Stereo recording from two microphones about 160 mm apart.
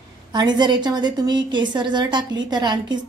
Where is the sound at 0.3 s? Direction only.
25° right (ahead or behind).